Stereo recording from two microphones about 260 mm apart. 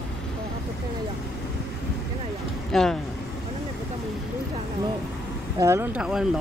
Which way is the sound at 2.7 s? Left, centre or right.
Centre.